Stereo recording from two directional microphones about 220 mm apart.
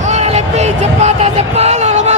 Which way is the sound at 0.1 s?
30° right (ahead or behind).